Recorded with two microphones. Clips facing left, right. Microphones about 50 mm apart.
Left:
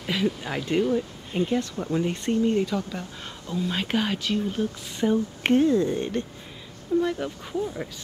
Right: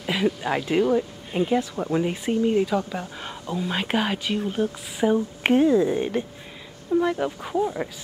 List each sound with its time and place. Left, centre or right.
0.0 s speech: centre